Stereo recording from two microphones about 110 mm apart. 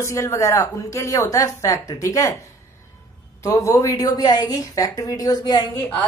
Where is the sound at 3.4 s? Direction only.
30° left (ahead or behind).